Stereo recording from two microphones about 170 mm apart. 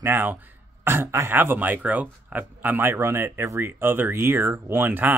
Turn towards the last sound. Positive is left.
turn(degrees=-10)  # may be behind; listen again after turning